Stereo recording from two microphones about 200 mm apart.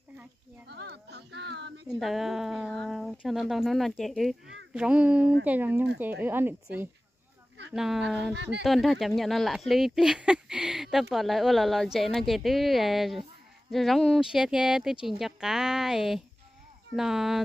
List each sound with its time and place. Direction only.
0.7 s music: 55° right (ahead or behind)
1.9 s speech: centre (ahead or behind)